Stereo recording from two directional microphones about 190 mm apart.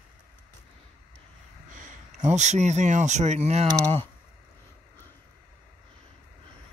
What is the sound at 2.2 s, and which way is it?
Speech, 35° right (ahead or behind).